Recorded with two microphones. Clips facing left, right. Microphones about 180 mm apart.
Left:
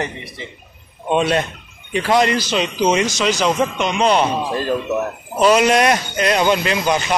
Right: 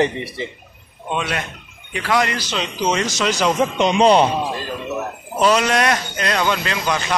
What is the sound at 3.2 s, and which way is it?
Speech, 5° left (ahead or behind).